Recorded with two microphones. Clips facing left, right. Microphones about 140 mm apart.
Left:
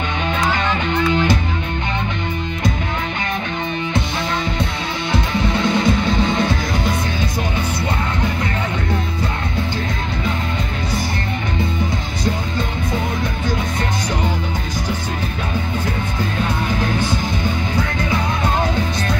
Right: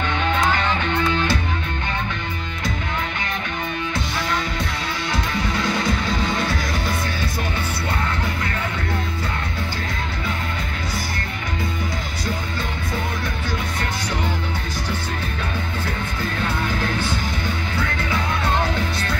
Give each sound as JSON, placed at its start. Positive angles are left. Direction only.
{"t": 1.1, "sound": "music", "side_deg": 15}
{"t": 5.1, "sound": "music", "side_deg": 25}